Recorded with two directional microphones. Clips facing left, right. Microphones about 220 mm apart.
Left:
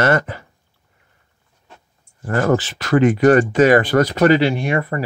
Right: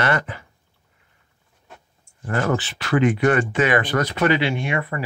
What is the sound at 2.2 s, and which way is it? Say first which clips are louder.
Speech: left 5 dB; 40° left (ahead or behind).